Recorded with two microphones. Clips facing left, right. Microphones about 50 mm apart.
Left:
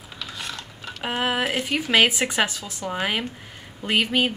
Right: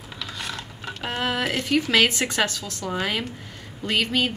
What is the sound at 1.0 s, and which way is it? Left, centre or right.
A woman's voice, centre.